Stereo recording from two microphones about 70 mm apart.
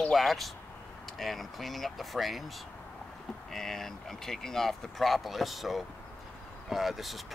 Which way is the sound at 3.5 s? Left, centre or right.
Centre.